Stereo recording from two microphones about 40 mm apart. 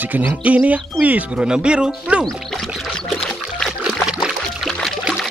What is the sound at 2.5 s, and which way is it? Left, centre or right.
Music, centre.